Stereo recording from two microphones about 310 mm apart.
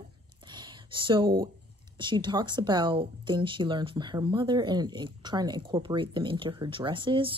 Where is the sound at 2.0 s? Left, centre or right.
Centre.